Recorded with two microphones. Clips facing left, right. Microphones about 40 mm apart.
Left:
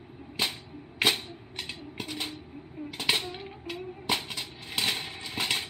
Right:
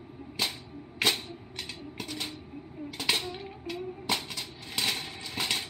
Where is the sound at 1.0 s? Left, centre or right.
Centre.